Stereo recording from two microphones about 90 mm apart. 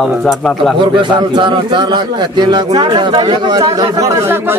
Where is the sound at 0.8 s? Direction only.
60° right (ahead or behind).